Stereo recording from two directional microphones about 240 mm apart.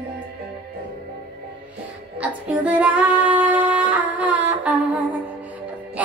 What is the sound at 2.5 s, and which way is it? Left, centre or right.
Female singing, centre.